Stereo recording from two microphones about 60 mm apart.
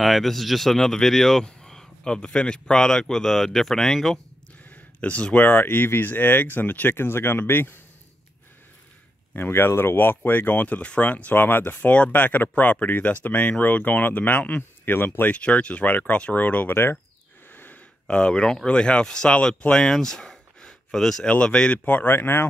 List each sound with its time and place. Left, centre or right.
0.0 s speech: centre
4.6 s a sound: left
5.5 s speech: left
9.3 s speech: left
15.3 s speech: centre
17.5 s a sound: left
18.0 s speech: centre
21.7 s speech: left